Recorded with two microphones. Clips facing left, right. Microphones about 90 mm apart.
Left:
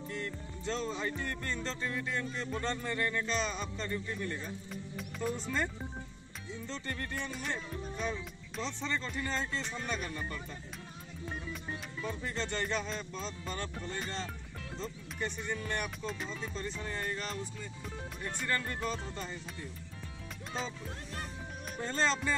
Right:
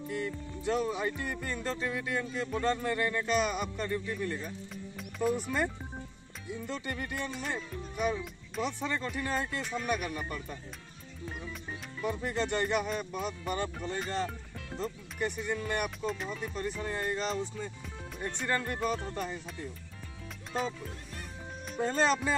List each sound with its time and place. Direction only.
0.1 s music: 10° right (ahead or behind)
2.6 s speech: 5° right (ahead or behind)
12.0 s speech: 15° right (ahead or behind)
18.6 s speech: 5° right (ahead or behind)
20.5 s speech: centre (ahead or behind)
21.8 s speech: 15° right (ahead or behind)